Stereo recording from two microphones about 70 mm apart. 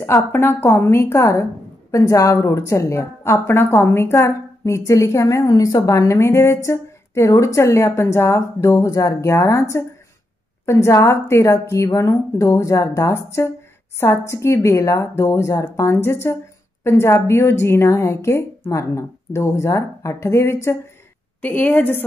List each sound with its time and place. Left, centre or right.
0.0 s a woman's voice: left
1.9 s a woman's voice: left
5.9 s a woman's voice: left
9.3 s a woman's voice: left
11.9 s a woman's voice: left
21.4 s a woman's voice: left